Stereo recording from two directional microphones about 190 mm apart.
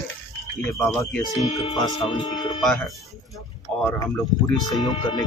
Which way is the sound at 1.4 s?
35° left (ahead or behind).